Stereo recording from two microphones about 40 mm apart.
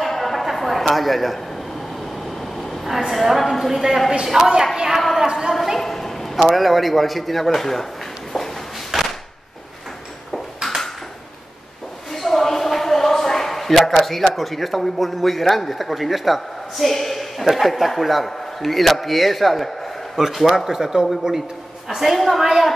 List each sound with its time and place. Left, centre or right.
0.0 s music: centre
2.4 s a woman's voice: centre
5.5 s speech: centre
5.8 s a sound: centre
6.3 s a man's voice: centre
8.9 s a sound: centre
12.1 s a man's voice: centre